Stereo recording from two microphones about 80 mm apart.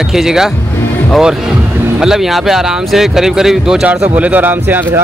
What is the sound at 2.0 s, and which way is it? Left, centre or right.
Speech, centre.